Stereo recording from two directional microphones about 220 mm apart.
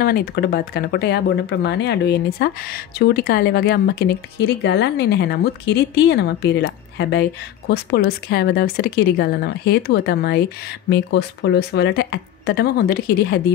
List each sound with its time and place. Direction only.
0.0 s speech: 45° left (ahead or behind)